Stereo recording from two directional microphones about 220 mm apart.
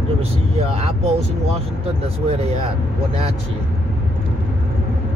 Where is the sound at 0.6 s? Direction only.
30° right (ahead or behind).